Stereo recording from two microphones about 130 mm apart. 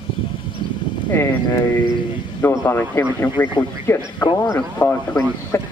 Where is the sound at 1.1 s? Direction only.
20° left (ahead or behind).